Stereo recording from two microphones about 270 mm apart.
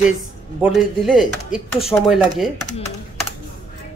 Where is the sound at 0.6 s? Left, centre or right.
Centre.